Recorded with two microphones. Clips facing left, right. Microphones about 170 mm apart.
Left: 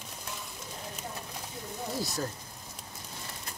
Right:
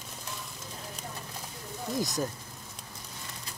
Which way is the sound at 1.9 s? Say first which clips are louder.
Right 4 dB; 20° right (ahead or behind).